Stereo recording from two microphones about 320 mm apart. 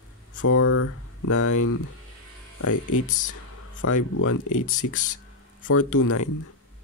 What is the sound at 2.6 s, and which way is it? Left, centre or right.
Speech, left.